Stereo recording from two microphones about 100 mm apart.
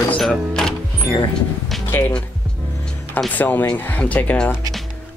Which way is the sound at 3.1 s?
15° left (ahead or behind).